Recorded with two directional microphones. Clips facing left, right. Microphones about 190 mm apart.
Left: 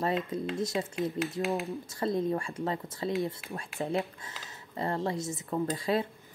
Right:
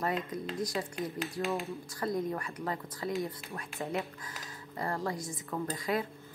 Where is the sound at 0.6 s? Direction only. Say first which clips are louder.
Left 2 dB; 25° left (ahead or behind).